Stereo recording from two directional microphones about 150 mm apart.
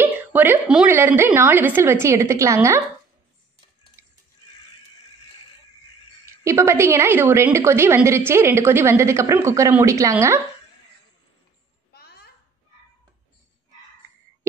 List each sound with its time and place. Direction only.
0.0 s a woman's voice: 10° right (ahead or behind)
6.4 s a woman's voice: 20° right (ahead or behind)
11.9 s a sound: 90° left